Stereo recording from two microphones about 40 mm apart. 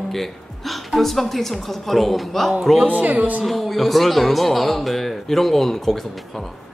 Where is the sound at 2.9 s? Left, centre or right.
Right.